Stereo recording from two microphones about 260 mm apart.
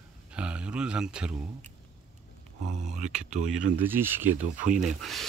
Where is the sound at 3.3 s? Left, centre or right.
Right.